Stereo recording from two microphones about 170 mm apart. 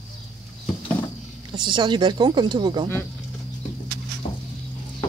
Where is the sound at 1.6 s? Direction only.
25° right (ahead or behind).